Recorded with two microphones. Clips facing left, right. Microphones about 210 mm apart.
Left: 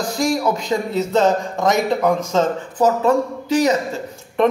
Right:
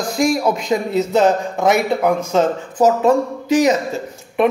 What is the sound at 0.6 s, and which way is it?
Speech, 15° right (ahead or behind).